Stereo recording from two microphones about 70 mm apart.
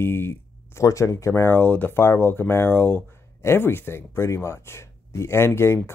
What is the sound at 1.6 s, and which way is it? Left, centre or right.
Speech, left.